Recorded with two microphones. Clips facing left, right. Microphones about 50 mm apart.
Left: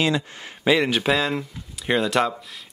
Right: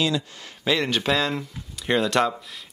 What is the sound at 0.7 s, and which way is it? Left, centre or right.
A man's voice, centre.